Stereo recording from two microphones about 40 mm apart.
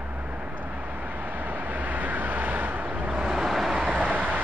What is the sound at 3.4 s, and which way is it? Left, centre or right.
Vehicle, centre.